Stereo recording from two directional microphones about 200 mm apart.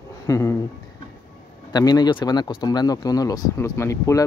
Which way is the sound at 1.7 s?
20° left (ahead or behind).